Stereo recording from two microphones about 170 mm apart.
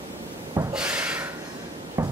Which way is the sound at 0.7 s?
5° right (ahead or behind).